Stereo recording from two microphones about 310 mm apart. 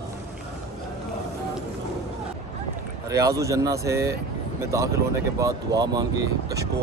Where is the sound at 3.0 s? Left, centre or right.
Centre.